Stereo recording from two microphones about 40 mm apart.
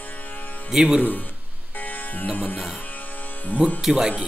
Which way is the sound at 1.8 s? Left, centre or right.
Left.